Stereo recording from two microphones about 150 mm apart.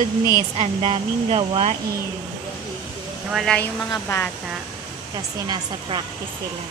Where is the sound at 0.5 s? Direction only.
40° right (ahead or behind).